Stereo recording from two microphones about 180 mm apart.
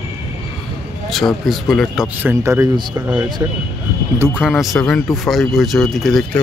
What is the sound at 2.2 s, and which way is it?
A man's voice, 15° right (ahead or behind).